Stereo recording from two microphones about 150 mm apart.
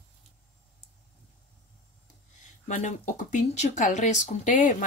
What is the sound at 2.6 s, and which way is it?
Speech, 55° left (ahead or behind).